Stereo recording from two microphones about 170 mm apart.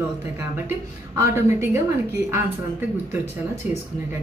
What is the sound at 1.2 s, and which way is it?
A woman's voice, 15° right (ahead or behind).